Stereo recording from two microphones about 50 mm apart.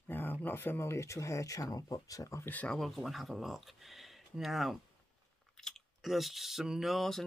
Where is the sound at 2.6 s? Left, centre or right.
Centre.